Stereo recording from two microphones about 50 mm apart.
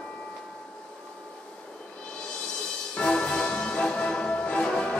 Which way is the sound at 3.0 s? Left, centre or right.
Centre.